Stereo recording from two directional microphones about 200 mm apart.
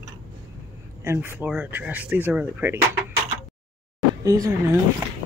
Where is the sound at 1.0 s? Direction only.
10° right (ahead or behind).